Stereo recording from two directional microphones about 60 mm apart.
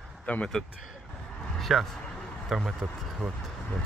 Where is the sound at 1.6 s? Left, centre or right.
Centre.